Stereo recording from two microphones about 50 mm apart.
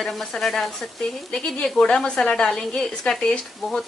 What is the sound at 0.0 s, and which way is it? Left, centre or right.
Speech, centre.